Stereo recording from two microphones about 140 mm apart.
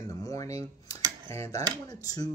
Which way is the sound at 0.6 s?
25° left (ahead or behind).